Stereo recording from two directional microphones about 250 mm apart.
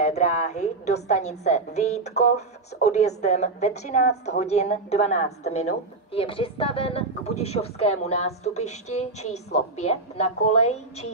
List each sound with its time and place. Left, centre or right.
0.0 s a woman's voice: left